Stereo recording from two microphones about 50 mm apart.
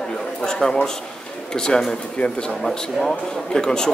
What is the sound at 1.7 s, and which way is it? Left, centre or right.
Speech, centre.